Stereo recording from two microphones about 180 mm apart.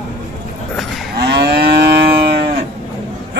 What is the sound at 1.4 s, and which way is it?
Moo, 65° right (ahead or behind).